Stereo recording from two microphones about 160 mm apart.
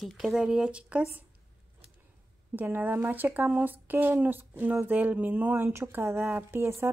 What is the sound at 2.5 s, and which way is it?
A woman's voice, 10° right (ahead or behind).